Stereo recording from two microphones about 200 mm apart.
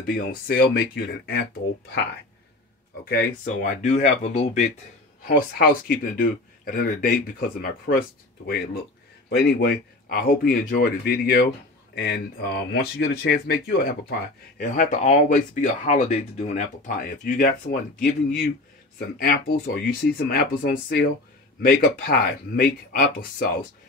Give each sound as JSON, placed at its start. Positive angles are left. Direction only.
{"t": 0.0, "sound": "speech", "side_deg": 45}
{"t": 3.4, "sound": "speech", "side_deg": 35}
{"t": 5.2, "sound": "speech", "side_deg": 45}
{"t": 9.3, "sound": "speech", "side_deg": 55}
{"t": 14.6, "sound": "speech", "side_deg": 40}